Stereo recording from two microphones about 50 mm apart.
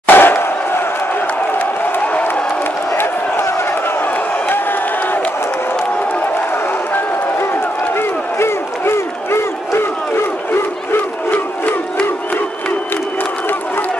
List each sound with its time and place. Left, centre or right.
0.0 s crowd: left
2.9 s a sound: left
4.5 s crowd: left
6.5 s run: left
7.9 s crowd: left
11.3 s crowd: left